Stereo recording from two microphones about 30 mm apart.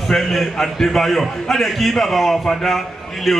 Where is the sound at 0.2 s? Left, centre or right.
Centre.